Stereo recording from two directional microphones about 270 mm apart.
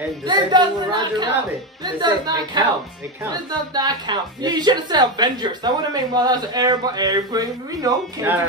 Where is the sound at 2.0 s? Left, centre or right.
Centre.